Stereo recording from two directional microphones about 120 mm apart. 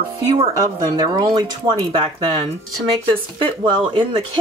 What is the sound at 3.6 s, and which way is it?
Speech, 45° right (ahead or behind).